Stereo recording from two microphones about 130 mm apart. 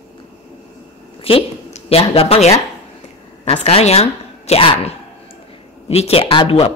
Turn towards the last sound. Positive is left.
turn(degrees=45)  # may be behind; listen again after turning